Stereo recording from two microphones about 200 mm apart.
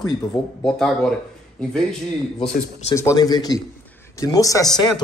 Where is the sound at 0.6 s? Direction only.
Centre (ahead or behind).